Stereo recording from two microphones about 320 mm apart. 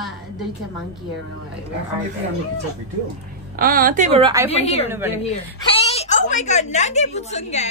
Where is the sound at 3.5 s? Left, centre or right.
Right.